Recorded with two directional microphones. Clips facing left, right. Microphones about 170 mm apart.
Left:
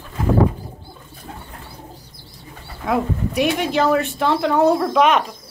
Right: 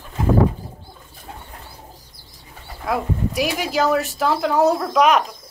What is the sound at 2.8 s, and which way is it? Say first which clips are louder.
Speech: left 2 dB; centre (ahead or behind).